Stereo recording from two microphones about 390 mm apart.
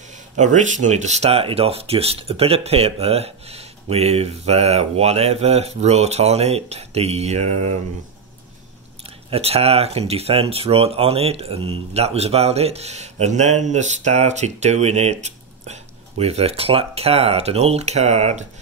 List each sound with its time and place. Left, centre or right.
0.1 s speech: centre
9.3 s speech: centre